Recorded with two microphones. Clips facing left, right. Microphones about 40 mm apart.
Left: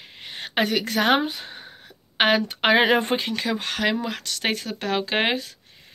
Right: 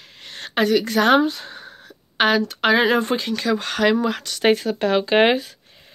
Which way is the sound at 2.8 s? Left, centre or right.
Left.